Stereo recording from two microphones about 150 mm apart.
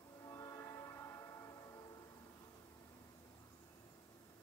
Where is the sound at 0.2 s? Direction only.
20° left (ahead or behind).